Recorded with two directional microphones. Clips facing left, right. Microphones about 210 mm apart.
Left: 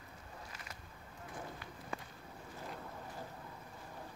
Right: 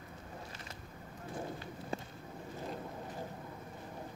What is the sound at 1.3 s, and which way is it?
Honk, 30° right (ahead or behind).